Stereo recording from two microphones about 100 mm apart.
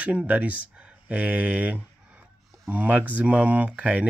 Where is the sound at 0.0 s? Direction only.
10° right (ahead or behind).